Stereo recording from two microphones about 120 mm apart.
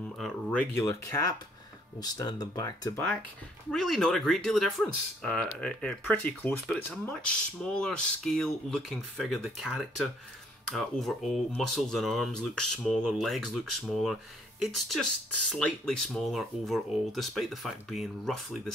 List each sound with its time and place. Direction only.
0.5 s speech: 10° left (ahead or behind)
0.8 s speech: 25° left (ahead or behind)
3.7 s speech: centre (ahead or behind)